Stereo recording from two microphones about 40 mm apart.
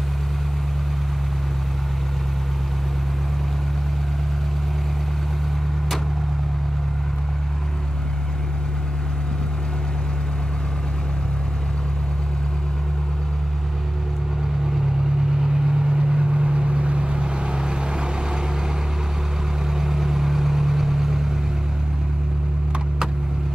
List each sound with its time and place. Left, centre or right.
15.4 s vehicle: centre
19.8 s vehicle: centre